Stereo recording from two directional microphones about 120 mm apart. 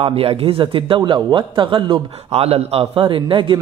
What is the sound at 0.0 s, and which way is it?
Speech, 50° right (ahead or behind).